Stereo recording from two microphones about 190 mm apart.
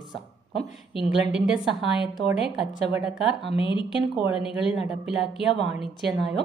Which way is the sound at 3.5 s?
25° left (ahead or behind).